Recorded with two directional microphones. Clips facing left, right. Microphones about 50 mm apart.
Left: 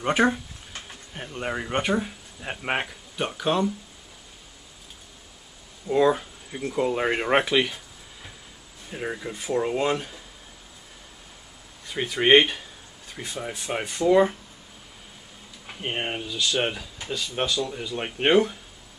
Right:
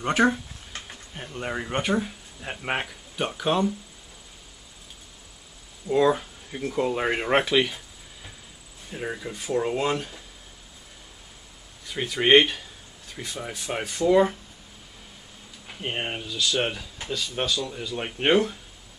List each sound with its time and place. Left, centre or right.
0.0 s speech: centre
5.9 s speech: centre
8.9 s speech: centre
11.9 s speech: centre
15.8 s speech: centre